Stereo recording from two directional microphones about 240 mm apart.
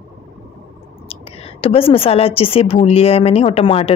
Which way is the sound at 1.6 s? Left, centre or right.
Left.